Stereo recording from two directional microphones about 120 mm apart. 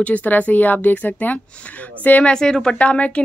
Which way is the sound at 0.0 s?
15° left (ahead or behind).